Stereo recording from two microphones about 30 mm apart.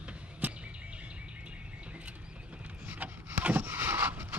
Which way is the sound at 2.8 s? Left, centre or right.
Right.